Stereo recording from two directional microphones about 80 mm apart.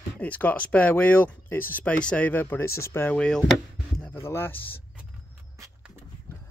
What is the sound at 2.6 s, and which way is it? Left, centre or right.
Speech, left.